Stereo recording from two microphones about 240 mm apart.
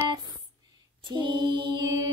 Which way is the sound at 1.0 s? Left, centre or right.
Centre.